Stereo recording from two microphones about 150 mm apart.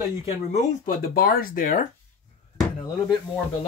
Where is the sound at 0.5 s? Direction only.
65° left (ahead or behind).